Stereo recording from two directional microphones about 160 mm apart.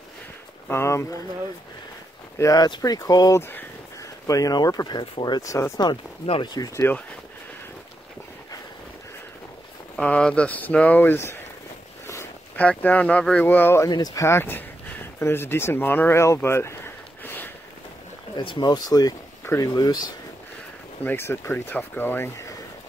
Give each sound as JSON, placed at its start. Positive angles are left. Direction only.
{"t": 0.7, "sound": "speech", "side_deg": 15}
{"t": 2.3, "sound": "speech", "side_deg": 20}
{"t": 9.9, "sound": "speech", "side_deg": 5}
{"t": 18.3, "sound": "speech", "side_deg": 30}
{"t": 21.0, "sound": "speech", "side_deg": 15}